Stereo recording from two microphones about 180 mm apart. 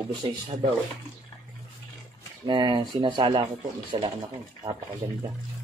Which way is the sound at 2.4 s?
25° right (ahead or behind).